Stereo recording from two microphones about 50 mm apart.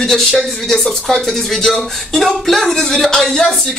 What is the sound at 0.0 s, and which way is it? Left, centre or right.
Speech, centre.